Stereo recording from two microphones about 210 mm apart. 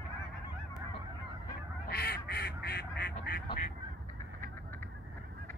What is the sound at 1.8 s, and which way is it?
Duck, 50° left (ahead or behind).